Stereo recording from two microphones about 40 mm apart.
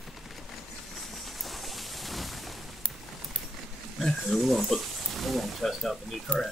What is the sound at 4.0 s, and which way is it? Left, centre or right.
Wild animals, centre.